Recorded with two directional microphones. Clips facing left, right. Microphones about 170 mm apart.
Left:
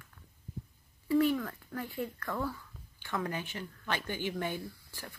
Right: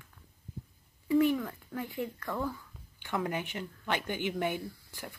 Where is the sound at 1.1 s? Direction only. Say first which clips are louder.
Right 1 dB; 15° right (ahead or behind).